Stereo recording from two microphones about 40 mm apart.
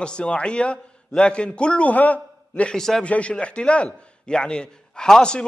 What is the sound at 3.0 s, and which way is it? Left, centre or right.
A man's voice, left.